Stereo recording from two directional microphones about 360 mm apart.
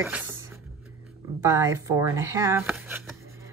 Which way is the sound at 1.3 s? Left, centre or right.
Centre.